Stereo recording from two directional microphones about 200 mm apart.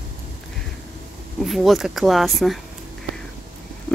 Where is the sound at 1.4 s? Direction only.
Centre (ahead or behind).